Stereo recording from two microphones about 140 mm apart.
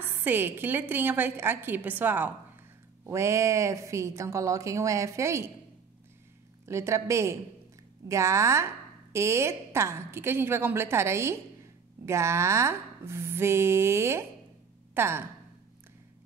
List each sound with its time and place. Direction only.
0.2 s a woman's voice: 15° right (ahead or behind)
6.6 s a woman's voice: 20° right (ahead or behind)